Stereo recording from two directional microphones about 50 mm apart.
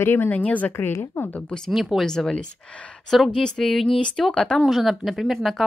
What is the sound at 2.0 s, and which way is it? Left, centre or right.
Speech, centre.